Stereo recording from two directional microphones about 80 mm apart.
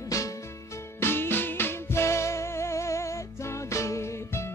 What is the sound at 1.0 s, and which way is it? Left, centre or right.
Music, left.